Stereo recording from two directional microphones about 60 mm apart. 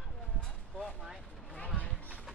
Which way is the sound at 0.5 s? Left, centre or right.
Centre.